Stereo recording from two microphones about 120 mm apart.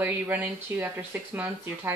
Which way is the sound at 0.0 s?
15° right (ahead or behind).